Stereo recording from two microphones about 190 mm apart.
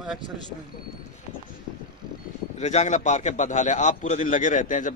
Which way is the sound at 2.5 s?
35° left (ahead or behind).